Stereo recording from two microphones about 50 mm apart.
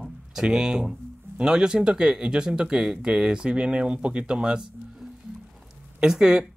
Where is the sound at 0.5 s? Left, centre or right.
Centre.